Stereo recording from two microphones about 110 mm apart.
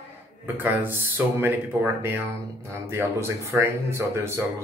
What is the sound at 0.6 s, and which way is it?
A man's voice, 15° right (ahead or behind).